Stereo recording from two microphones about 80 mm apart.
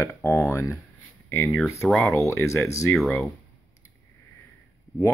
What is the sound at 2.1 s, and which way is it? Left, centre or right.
Speech, left.